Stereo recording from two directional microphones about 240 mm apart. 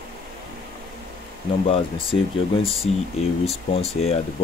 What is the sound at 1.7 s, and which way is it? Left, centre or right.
Speech, left.